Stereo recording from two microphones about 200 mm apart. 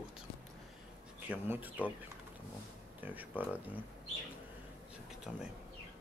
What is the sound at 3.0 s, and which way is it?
Speech, 10° right (ahead or behind).